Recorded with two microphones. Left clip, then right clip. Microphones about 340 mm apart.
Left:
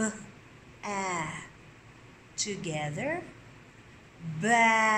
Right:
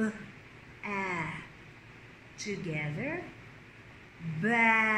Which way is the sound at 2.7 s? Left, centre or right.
Left.